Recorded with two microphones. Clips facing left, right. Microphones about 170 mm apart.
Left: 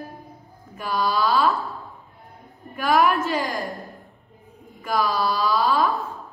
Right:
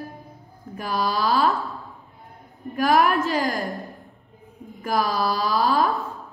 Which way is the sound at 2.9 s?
Centre (ahead or behind).